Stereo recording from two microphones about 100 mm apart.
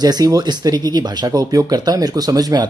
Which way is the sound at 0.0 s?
40° right (ahead or behind).